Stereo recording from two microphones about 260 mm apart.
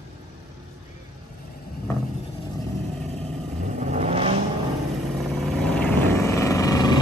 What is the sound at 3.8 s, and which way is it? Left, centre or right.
Vehicle, right.